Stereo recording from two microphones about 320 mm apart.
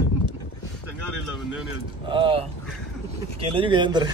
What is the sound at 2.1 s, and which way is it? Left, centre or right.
Speech, centre.